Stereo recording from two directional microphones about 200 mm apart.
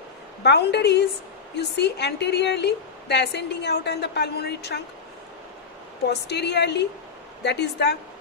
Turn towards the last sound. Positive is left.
turn(degrees=55)  # may be behind; listen again after turning